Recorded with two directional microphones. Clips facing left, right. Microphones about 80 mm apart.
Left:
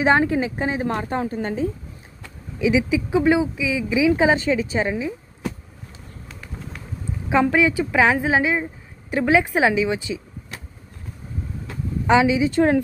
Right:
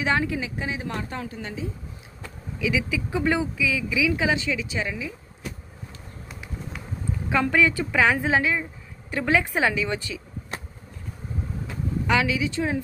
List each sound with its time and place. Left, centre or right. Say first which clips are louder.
0.0 s a woman's voice: left 7 dB; left
2.6 s speech: left 7 dB; left
7.2 s a woman's voice: left 4 dB; centre
12.1 s speech: left 7 dB; left
12.4 s a woman's voice: left 9 dB; left